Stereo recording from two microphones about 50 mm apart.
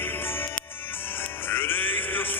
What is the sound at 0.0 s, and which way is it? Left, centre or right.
Music, left.